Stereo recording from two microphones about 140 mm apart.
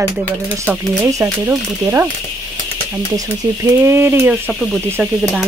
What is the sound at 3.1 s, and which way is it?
Speech, 20° right (ahead or behind).